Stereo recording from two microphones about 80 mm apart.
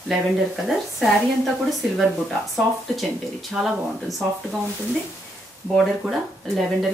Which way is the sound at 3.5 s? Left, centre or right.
Centre.